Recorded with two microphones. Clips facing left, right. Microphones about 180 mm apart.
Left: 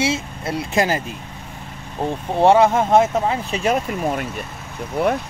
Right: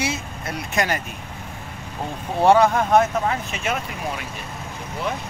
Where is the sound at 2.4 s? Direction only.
25° left (ahead or behind).